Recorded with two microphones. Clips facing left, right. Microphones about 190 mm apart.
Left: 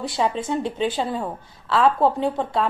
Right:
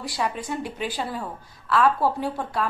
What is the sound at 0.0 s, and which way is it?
A woman's voice, 25° left (ahead or behind).